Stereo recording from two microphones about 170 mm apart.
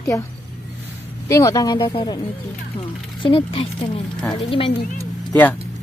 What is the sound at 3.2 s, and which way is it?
Speech, 35° left (ahead or behind).